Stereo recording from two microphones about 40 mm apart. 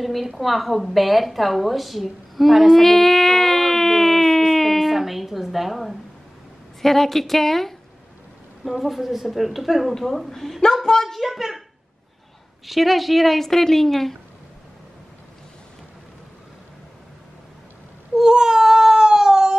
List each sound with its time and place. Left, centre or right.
0.0 s a sound: centre
6.8 s a woman's voice: centre
10.6 s a woman's voice: centre
11.1 s a child's voice: centre
12.6 s a woman's voice: centre
18.1 s a sound: centre